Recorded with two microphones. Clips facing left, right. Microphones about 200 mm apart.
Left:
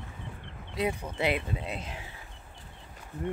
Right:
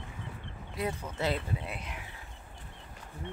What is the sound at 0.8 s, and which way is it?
Speech, 15° left (ahead or behind).